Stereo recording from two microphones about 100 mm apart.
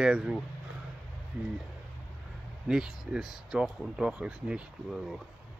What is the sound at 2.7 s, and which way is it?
Speech, 5° right (ahead or behind).